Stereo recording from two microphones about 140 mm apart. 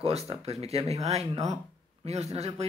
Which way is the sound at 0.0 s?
45° right (ahead or behind).